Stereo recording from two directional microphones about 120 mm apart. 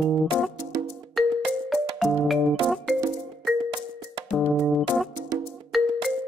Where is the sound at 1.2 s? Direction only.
Centre (ahead or behind).